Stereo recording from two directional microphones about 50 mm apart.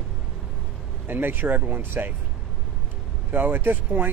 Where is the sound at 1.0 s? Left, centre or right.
Right.